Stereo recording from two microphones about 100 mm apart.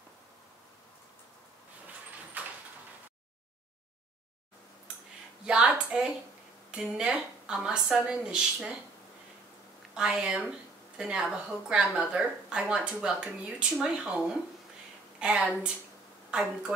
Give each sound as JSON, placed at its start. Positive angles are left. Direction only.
{"t": 2.4, "sound": "sliding door", "side_deg": -15}
{"t": 5.5, "sound": "a sound", "side_deg": -10}
{"t": 6.7, "sound": "speech", "side_deg": -5}
{"t": 9.9, "sound": "a woman's voice", "side_deg": -10}